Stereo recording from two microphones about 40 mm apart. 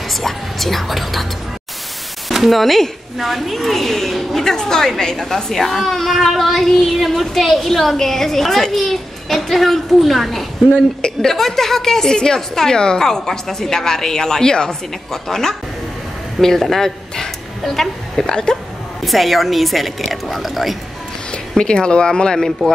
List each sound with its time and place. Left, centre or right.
0.1 s speech: centre
2.2 s a child's voice: centre
10.7 s speech: left
11.2 s a woman's voice: centre
18.3 s speech: centre
19.0 s a child's voice: centre
21.3 s speech: centre